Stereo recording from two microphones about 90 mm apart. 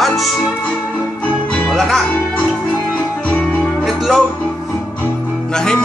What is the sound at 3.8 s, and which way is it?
Music, centre (ahead or behind).